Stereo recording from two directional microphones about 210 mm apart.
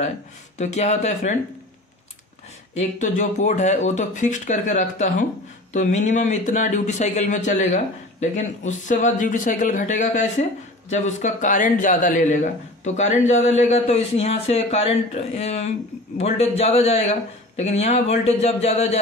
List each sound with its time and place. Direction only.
0.6 s a man's voice: 35° left (ahead or behind)
2.7 s a man's voice: 35° left (ahead or behind)